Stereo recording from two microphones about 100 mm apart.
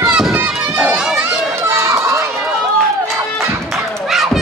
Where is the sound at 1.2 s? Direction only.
25° right (ahead or behind).